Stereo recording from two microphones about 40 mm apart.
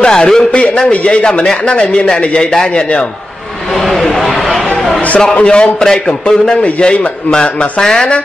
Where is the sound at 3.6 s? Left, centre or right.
Centre.